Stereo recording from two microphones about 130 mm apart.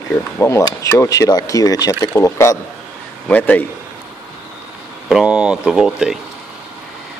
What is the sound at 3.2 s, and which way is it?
Speech, 10° left (ahead or behind).